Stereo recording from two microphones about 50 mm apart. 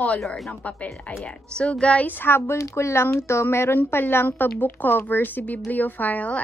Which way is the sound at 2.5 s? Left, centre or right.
Left.